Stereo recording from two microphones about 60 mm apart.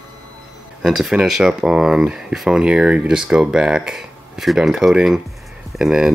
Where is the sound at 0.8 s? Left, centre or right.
Centre.